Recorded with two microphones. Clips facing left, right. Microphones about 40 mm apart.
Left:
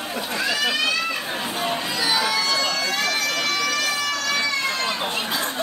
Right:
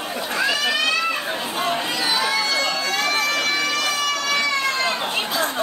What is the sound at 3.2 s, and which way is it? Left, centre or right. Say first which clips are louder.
Run: right 2 dB; centre.